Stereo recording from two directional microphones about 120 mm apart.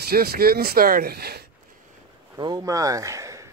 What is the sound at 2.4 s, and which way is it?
Speech, 35° right (ahead or behind).